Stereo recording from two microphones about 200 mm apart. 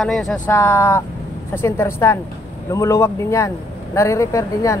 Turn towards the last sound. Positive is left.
turn(degrees=15)  # may be behind; listen again after turning